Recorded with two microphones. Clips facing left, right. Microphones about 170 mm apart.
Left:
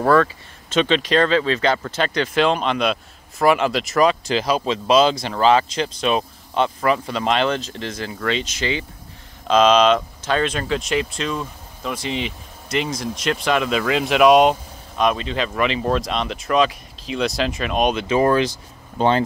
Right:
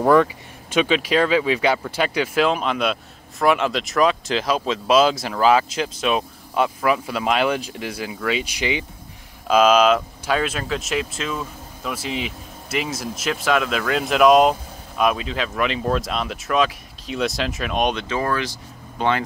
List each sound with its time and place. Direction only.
0.0 s speech: 15° right (ahead or behind); by 18.0 s centre (ahead or behind)
18.0 s speech: 20° left (ahead or behind)
18.9 s speech: 30° left (ahead or behind)